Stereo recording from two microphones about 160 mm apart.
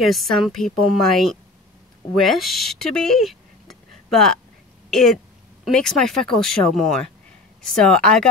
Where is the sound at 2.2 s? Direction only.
Centre (ahead or behind).